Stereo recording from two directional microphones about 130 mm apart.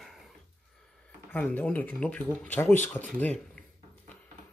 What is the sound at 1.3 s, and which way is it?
Speech, 15° left (ahead or behind).